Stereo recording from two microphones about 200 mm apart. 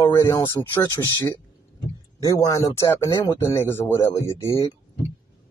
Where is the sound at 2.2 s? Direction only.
15° left (ahead or behind).